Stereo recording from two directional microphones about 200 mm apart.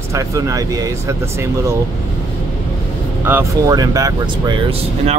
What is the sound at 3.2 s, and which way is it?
Speech, 10° right (ahead or behind).